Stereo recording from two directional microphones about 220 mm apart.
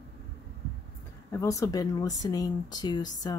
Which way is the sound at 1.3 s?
15° left (ahead or behind).